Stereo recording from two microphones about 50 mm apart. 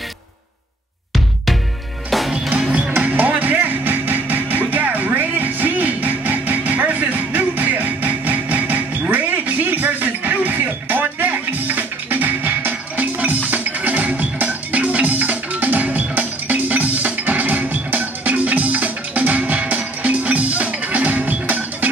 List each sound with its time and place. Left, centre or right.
1.1 s music: centre
3.0 s music: right